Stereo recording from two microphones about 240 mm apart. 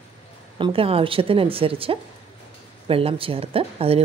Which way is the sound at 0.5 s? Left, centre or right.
Right.